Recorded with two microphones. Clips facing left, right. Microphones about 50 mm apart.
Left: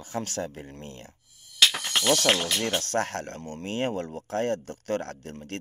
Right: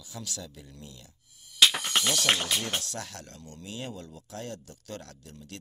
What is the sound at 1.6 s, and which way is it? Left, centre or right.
Music, centre.